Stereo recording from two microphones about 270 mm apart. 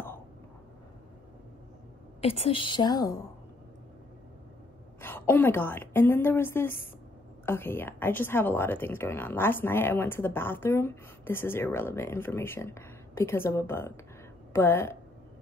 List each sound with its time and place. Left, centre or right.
2.2 s speech: centre
5.0 s speech: centre